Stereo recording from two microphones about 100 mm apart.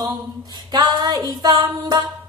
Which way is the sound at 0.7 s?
45° right (ahead or behind).